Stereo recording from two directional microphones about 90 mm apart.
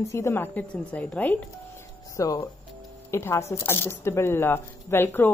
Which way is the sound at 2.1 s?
40° left (ahead or behind).